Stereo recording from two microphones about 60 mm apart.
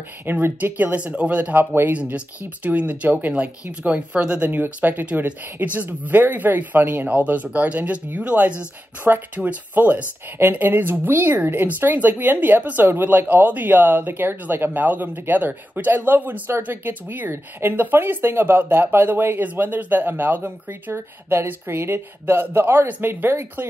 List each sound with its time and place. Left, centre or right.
0.3 s speech: right
0.8 s speech: right
1.6 s speech: right
2.0 s speech: right
4.5 s speech: right